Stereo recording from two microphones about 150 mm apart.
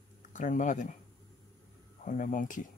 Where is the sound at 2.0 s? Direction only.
60° left (ahead or behind).